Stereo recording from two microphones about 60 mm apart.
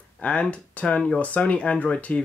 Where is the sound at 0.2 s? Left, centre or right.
Left.